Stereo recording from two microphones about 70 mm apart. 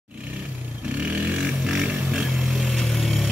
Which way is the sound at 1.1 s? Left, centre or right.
Centre.